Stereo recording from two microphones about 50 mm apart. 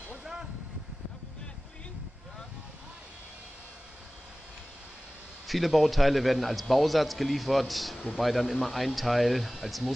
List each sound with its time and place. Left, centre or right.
0.2 s vehicle: centre
5.5 s a man's voice: centre